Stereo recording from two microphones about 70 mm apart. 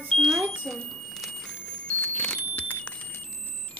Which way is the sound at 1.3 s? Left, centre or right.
Centre.